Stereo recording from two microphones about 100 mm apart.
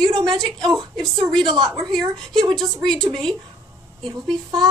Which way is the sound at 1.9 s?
55° right (ahead or behind).